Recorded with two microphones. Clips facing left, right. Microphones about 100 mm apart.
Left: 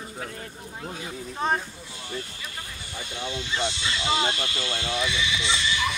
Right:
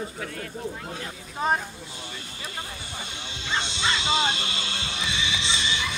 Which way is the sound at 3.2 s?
20° right (ahead or behind).